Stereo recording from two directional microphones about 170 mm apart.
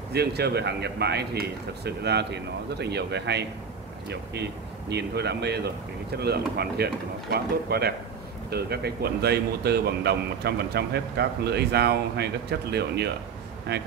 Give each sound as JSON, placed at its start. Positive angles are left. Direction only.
{"t": 0.1, "sound": "speech", "side_deg": -75}